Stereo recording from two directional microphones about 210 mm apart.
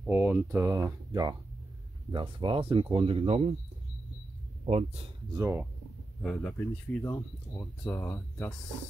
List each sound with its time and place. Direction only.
0.0 s speech: 5° right (ahead or behind); by 3.4 s 30° right (ahead or behind)
4.6 s speech: 30° right (ahead or behind)
5.3 s speech: 15° right (ahead or behind)
6.2 s speech: centre (ahead or behind)
7.0 s speech: 15° left (ahead or behind)